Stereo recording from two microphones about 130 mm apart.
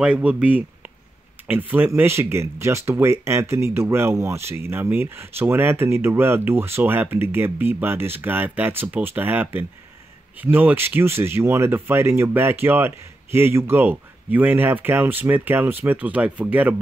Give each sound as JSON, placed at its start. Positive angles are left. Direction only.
{"t": 0.0, "sound": "speech", "side_deg": -10}